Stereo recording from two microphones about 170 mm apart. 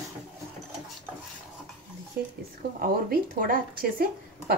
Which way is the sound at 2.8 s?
55° right (ahead or behind).